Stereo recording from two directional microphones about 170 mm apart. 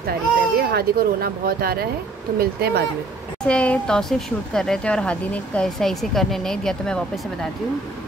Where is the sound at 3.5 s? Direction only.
5° left (ahead or behind).